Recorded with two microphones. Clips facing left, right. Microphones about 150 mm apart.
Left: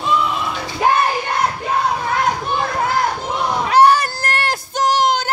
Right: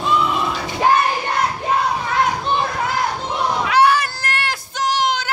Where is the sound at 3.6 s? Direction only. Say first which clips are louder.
Left 4 dB; 40° left (ahead or behind).